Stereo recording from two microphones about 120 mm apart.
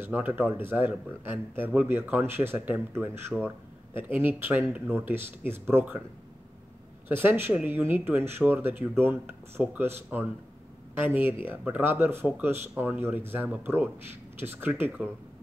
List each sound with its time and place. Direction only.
0.0 s speech: 15° right (ahead or behind)
7.1 s speech: 20° right (ahead or behind)